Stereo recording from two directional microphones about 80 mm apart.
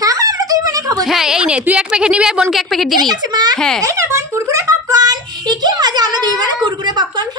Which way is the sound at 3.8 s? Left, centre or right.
Right.